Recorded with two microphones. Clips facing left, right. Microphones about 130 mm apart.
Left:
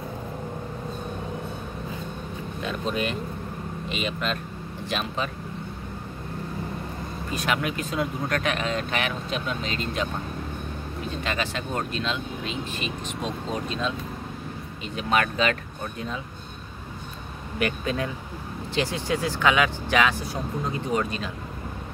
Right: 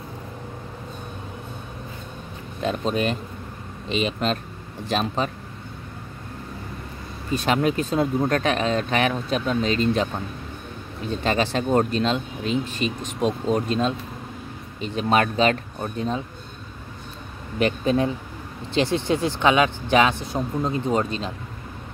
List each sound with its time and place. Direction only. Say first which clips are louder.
2.6 s speech: right 5 dB; 35° right (ahead or behind)
7.3 s speech: right 6 dB; 35° right (ahead or behind)
11.2 s speech: right 9 dB; 35° right (ahead or behind)
14.8 s speech: right 4 dB; 35° right (ahead or behind)
17.6 s speech: right 6 dB; 25° right (ahead or behind)